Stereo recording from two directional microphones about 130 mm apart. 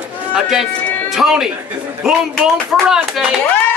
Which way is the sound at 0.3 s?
5° right (ahead or behind).